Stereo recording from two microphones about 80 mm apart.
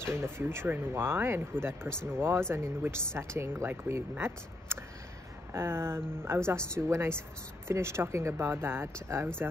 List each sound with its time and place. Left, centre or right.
0.0 s a woman's voice: right